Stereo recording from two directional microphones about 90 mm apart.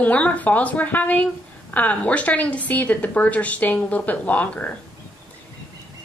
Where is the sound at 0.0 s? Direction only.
15° left (ahead or behind).